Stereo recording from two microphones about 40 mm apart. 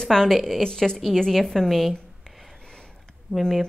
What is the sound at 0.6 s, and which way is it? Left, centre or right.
A woman's voice, centre.